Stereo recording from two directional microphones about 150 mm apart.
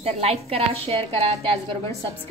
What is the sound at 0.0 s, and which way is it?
A woman's voice, 40° right (ahead or behind).